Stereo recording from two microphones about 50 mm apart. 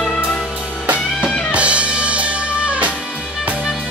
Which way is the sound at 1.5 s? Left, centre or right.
Right.